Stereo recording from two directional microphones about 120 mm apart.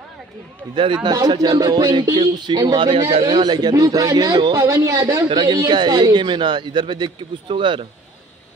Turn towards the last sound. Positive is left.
turn(degrees=-45)  # may be behind; listen again after turning